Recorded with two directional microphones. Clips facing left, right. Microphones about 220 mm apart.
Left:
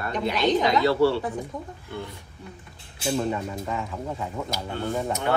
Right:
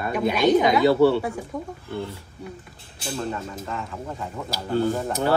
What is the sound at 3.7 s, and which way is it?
Speech, 5° left (ahead or behind).